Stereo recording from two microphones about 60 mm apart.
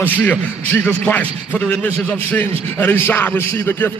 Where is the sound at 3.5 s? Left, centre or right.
Left.